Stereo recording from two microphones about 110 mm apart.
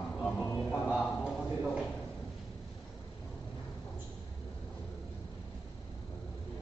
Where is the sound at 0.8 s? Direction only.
10° left (ahead or behind).